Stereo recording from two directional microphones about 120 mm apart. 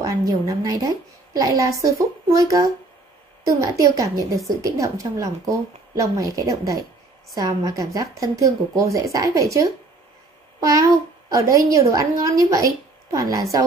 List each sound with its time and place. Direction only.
0.0 s a woman's voice: 30° right (ahead or behind)